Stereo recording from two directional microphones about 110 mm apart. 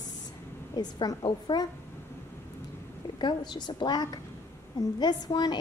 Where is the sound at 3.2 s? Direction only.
40° left (ahead or behind).